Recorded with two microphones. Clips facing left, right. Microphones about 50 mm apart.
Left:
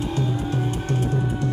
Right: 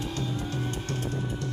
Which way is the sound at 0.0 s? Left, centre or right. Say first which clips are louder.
Left 7 dB; left.